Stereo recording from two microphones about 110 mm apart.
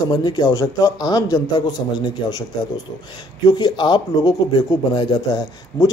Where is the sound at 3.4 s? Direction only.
40° left (ahead or behind).